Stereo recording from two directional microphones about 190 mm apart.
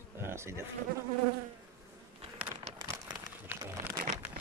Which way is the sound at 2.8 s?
10° right (ahead or behind).